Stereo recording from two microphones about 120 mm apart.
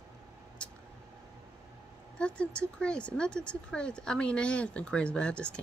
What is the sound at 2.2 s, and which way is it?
Speech, 10° left (ahead or behind).